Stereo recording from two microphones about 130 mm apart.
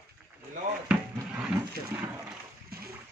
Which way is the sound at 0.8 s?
5° right (ahead or behind).